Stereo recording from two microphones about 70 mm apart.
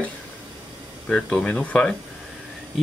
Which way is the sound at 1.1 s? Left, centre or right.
Centre.